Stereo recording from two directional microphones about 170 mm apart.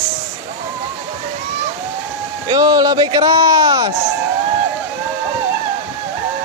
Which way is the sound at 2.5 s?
25° right (ahead or behind).